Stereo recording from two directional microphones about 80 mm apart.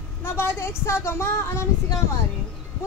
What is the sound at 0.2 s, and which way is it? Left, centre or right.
Speech, left.